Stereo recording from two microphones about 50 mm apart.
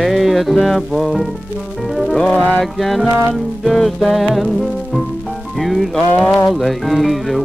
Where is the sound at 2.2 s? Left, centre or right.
Left.